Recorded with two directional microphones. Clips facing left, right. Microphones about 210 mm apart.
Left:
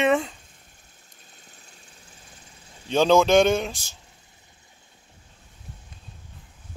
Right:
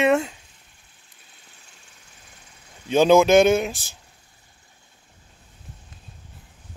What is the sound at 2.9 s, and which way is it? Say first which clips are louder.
Speech: right 3 dB; 10° right (ahead or behind).